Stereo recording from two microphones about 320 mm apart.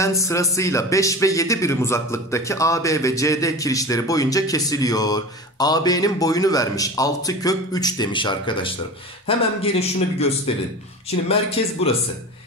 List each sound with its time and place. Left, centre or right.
0.0 s a man's voice: centre